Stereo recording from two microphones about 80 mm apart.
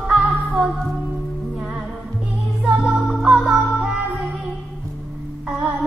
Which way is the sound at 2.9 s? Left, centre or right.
Centre.